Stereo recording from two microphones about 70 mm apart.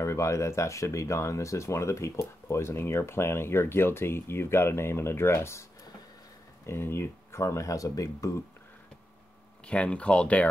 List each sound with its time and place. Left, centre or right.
0.0 s speech: left
9.7 s speech: centre